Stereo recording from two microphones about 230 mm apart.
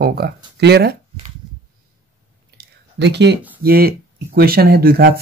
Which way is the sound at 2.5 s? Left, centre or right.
Right.